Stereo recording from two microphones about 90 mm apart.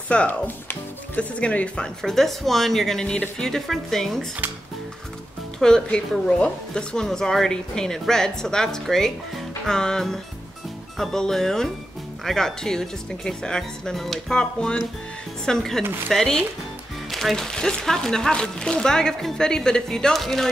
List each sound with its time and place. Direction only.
0.1 s speech: 15° left (ahead or behind)
5.6 s a woman's voice: 5° left (ahead or behind)